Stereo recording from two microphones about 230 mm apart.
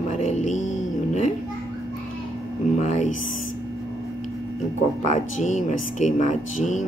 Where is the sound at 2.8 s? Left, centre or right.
Left.